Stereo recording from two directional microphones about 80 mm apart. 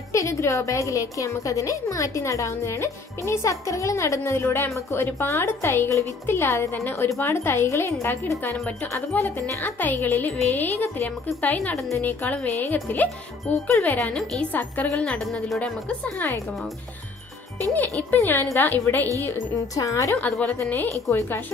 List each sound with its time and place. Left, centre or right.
0.1 s a woman's voice: left
13.9 s a woman's voice: centre
15.0 s speech: centre
15.6 s a woman's voice: centre
17.7 s speech: left
19.5 s a woman's voice: left
20.2 s speech: centre